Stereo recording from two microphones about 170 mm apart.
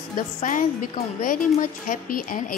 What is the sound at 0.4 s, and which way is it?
A woman's voice, 50° left (ahead or behind).